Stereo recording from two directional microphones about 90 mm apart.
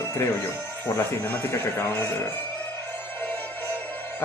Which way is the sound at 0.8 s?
25° left (ahead or behind).